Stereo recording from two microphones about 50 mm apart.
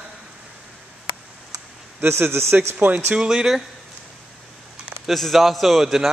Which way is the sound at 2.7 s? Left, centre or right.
Right.